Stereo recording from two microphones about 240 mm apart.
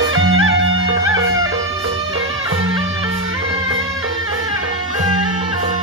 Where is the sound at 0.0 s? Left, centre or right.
Right.